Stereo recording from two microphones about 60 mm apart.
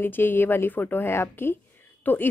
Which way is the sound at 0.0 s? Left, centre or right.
Left.